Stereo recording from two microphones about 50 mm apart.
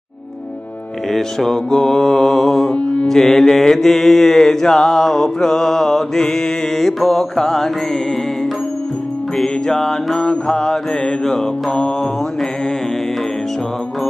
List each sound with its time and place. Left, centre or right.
1.1 s mantra: centre
2.7 s music: left
3.1 s mantra: centre
9.4 s mantra: centre